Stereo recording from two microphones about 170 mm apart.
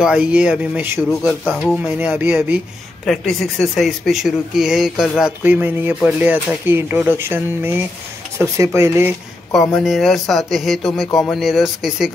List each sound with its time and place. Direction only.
0.0 s speech: 5° right (ahead or behind)
1.4 s speech: 5° left (ahead or behind)
1.8 s speech: 10° right (ahead or behind)
3.1 s speech: centre (ahead or behind); by 9.1 s 15° right (ahead or behind)
9.8 s speech: centre (ahead or behind)